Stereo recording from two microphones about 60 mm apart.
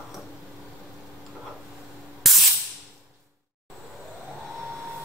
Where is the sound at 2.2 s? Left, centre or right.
Centre.